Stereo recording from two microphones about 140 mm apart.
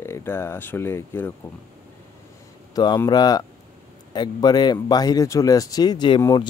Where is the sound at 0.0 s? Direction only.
20° left (ahead or behind).